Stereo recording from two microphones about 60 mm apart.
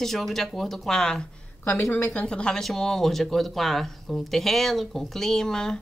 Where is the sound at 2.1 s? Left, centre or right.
Centre.